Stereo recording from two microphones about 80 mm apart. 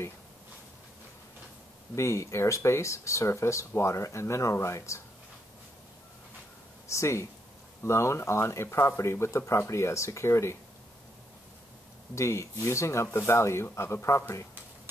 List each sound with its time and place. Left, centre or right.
2.0 s speech: left
6.9 s speech: left
12.2 s speech: left